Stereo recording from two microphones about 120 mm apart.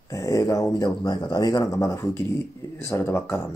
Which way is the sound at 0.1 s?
25° left (ahead or behind).